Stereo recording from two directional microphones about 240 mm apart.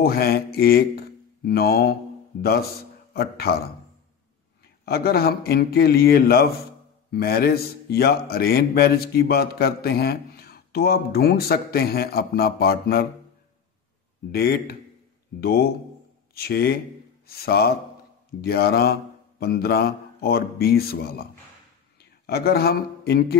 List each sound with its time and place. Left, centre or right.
0.0 s speech: left
4.8 s speech: left
14.3 s speech: left